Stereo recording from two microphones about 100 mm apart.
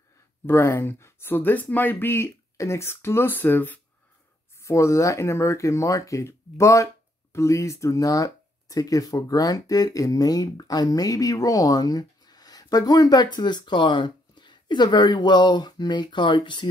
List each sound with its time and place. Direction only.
0.5 s speech: 25° left (ahead or behind)
4.6 s speech: 30° left (ahead or behind); by 16.6 s 50° left (ahead or behind)